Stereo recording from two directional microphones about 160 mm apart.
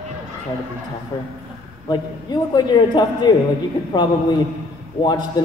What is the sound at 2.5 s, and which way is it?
A man's voice, 25° left (ahead or behind).